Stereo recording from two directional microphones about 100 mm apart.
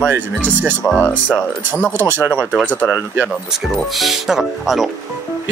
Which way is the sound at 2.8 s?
20° right (ahead or behind).